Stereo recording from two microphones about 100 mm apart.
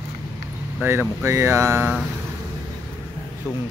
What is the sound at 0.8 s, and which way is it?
Speech, 25° right (ahead or behind).